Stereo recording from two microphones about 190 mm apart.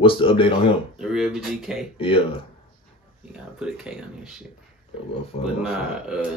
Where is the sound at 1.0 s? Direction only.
Centre (ahead or behind).